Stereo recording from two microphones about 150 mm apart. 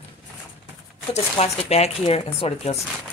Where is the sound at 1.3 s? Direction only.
45° left (ahead or behind).